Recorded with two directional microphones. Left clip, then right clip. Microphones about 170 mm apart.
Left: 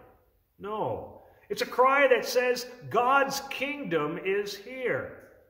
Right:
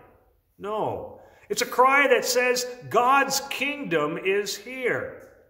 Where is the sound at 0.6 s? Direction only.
25° right (ahead or behind).